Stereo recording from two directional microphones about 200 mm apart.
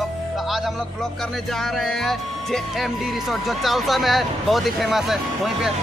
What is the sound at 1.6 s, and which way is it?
Speech, centre (ahead or behind).